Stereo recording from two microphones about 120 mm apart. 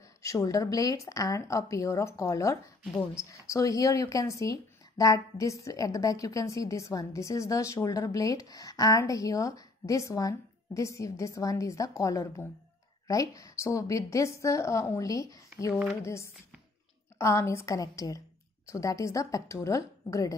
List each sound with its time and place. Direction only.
0.2 s speech: 25° left (ahead or behind)